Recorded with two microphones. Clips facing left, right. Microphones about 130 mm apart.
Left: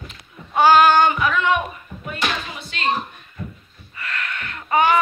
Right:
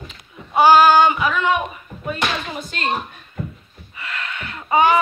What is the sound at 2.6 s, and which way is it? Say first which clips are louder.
Speech: right 3 dB; 45° right (ahead or behind).